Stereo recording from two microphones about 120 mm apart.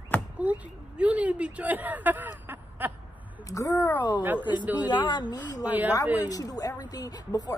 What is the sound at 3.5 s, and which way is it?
Speech, 30° left (ahead or behind).